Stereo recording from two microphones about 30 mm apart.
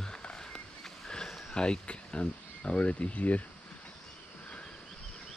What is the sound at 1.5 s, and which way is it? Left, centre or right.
Speech, left.